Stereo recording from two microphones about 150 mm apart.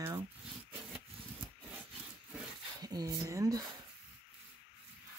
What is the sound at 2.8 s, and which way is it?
Speech, 25° right (ahead or behind).